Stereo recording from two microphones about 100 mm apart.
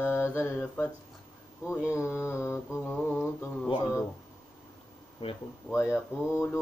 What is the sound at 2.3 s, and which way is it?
Mantra, 30° left (ahead or behind).